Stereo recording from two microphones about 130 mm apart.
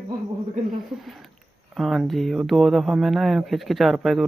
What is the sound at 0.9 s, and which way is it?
Speech, centre (ahead or behind).